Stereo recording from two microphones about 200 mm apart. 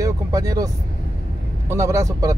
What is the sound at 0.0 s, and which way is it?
Vehicle, 15° right (ahead or behind).